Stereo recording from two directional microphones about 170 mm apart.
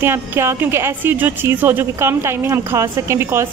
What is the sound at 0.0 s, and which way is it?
A woman's voice, 15° right (ahead or behind).